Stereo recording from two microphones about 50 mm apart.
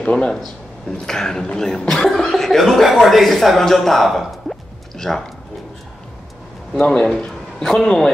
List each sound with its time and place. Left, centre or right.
0.0 s speech: centre
6.8 s a man's voice: left
7.2 s a sound: centre